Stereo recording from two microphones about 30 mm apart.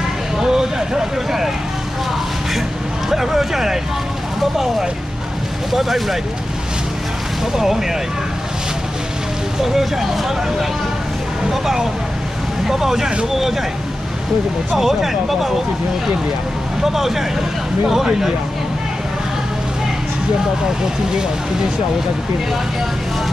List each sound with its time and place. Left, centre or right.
0.4 s vehicle: right
3.1 s speech: centre
5.7 s speech: centre
7.5 s speech: centre
9.6 s speech: centre
14.7 s speech: centre
16.8 s speech: centre